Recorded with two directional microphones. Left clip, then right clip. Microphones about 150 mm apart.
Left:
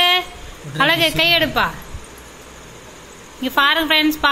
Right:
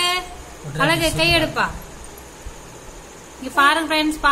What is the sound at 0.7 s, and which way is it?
Speech, 35° left (ahead or behind).